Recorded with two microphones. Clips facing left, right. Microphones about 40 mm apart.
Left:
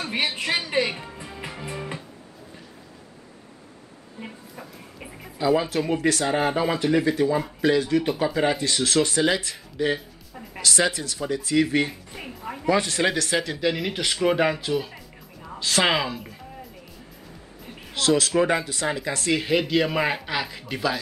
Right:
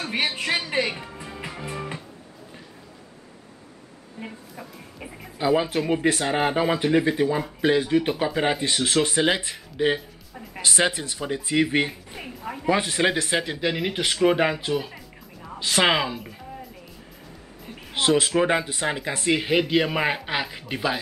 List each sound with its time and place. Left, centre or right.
0.0 s speech: centre
4.2 s music: centre
5.4 s speech: centre
9.9 s speech: centre
10.6 s speech: right
11.9 s speech: centre
12.6 s speech: centre
14.2 s music: centre
15.6 s speech: centre
17.9 s speech: right